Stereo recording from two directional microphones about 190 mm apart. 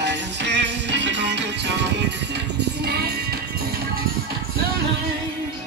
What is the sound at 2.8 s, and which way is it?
Music, 55° right (ahead or behind).